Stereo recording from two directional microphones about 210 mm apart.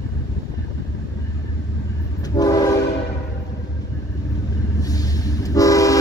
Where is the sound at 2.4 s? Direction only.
15° left (ahead or behind).